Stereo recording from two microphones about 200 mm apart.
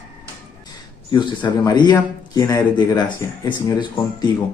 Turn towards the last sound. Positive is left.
turn(degrees=20)  # may be behind; listen again after turning